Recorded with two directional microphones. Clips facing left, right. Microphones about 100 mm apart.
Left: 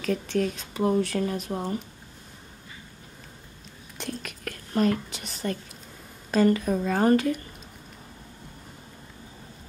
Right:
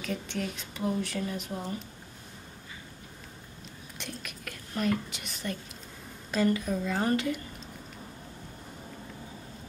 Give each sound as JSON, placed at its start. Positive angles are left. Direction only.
{"t": 0.3, "sound": "a woman's voice", "side_deg": 40}
{"t": 4.0, "sound": "a woman's voice", "side_deg": 40}